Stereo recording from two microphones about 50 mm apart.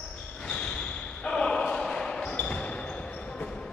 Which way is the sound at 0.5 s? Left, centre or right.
Centre.